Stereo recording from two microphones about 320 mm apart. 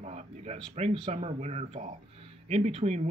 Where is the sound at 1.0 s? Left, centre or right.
Right.